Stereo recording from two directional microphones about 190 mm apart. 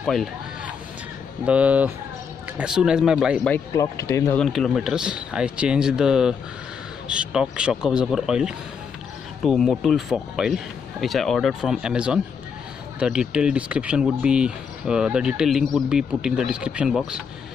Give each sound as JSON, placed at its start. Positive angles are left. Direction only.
{"t": 0.0, "sound": "speech", "side_deg": 0}
{"t": 3.5, "sound": "speech", "side_deg": 15}
{"t": 4.5, "sound": "speech", "side_deg": 0}